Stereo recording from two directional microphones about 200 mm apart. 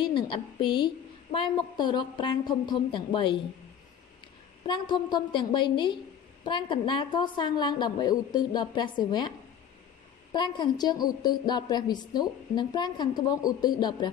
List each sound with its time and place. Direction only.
0.0 s a woman's voice: 25° left (ahead or behind)
4.6 s a woman's voice: 25° left (ahead or behind)
10.3 s a woman's voice: 20° left (ahead or behind)